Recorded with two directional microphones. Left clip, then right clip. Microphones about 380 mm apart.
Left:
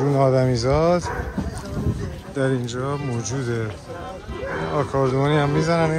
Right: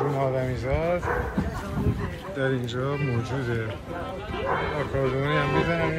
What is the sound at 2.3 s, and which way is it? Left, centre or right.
Speech, centre.